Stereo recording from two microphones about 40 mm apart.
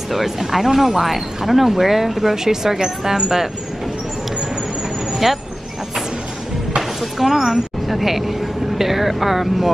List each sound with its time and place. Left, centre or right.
0.1 s speech: centre
5.1 s vehicle: centre
7.0 s a woman's voice: centre